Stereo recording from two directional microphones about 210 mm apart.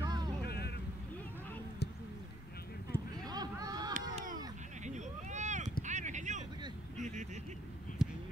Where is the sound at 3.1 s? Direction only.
20° right (ahead or behind).